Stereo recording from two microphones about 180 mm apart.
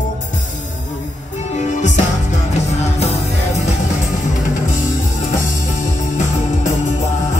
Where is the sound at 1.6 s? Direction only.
40° left (ahead or behind).